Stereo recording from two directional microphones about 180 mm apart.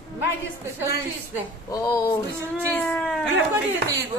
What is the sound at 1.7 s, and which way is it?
Speech, 20° left (ahead or behind).